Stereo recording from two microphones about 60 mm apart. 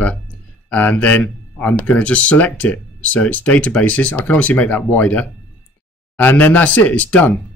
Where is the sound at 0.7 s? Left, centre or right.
Left.